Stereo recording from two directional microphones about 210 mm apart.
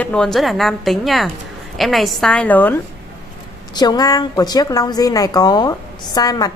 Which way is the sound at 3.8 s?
20° left (ahead or behind).